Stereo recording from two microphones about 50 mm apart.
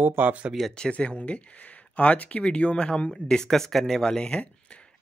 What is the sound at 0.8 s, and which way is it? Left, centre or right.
Speech, left.